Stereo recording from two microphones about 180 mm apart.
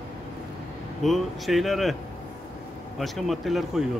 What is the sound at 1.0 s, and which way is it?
Speech, centre (ahead or behind).